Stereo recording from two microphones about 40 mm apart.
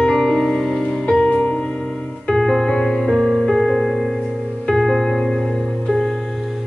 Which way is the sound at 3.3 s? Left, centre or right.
Centre.